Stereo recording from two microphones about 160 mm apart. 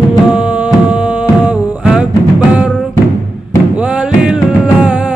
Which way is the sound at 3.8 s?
5° right (ahead or behind).